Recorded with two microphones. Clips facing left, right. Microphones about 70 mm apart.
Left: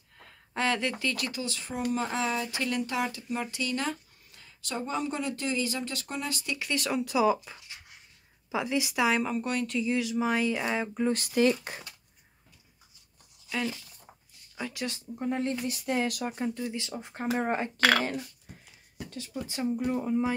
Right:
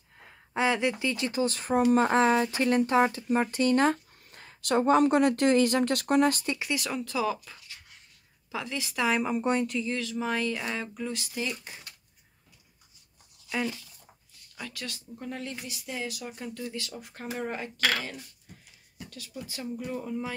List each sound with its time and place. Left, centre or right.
0.2 s a sound: centre
1.4 s speech: right
6.4 s speech: right
6.7 s speech: centre
7.0 s speech: centre
9.4 s speech: right
9.7 s speech: centre
11.1 s speech: left
14.6 s speech: centre
15.6 s speech: left
16.5 s speech: left
19.0 s speech: left